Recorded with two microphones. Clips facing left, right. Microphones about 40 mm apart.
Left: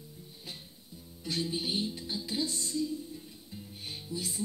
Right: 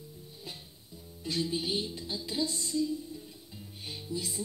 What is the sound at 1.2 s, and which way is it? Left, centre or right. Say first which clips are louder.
Music: right 1 dB; left.